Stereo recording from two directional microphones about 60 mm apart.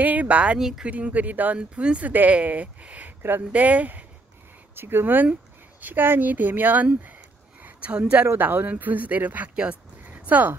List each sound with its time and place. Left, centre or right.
0.0 s speech: right
0.6 s speech: centre
0.8 s speech: right
3.2 s speech: right
3.5 s speech: right
4.7 s speech: right
7.6 s a sound: right
8.4 s speech: right
9.6 s a sound: right